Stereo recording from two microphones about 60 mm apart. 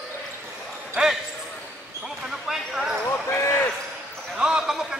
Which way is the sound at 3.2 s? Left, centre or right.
Left.